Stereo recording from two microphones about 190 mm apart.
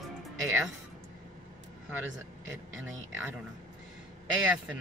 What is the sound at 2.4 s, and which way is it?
Speech, 90° right.